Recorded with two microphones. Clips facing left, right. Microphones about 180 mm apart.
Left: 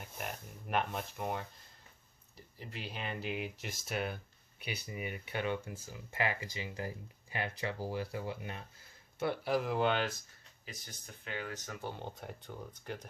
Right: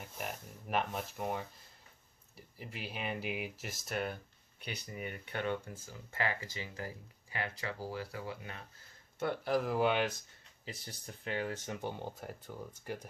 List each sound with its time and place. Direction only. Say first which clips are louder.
0.0 s speech: right 1 dB; centre (ahead or behind); by 8.5 s 20° left (ahead or behind)
9.2 s speech: even; 5° left (ahead or behind)
10.6 s speech: right 4 dB; 30° right (ahead or behind)
11.8 s speech: right 2 dB; 5° right (ahead or behind)